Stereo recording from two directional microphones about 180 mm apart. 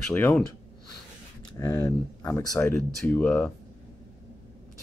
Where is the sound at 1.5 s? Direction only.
15° left (ahead or behind).